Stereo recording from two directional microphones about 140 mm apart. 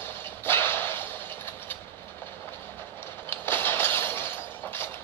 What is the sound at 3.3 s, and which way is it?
Breaking, 15° left (ahead or behind).